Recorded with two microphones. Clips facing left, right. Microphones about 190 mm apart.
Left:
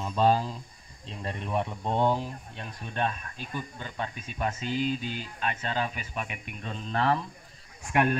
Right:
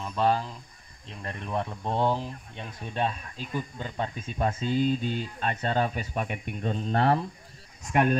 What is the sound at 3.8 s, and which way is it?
Speech, 30° right (ahead or behind).